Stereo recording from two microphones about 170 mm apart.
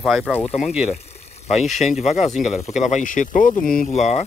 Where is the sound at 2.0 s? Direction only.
40° left (ahead or behind).